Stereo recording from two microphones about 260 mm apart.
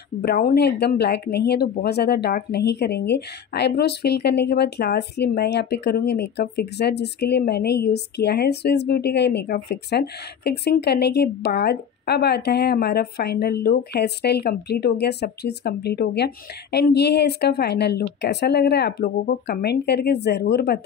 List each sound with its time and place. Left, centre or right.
0.2 s speech: left